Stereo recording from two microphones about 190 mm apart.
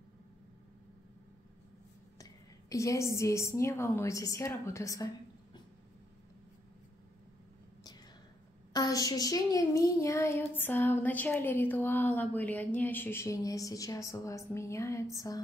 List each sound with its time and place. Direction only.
2.7 s speech: 15° left (ahead or behind)
8.7 s speech: 20° left (ahead or behind)